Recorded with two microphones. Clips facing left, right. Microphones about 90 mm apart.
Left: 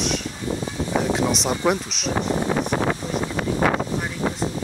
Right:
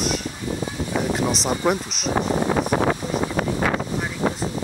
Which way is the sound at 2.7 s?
40° right (ahead or behind).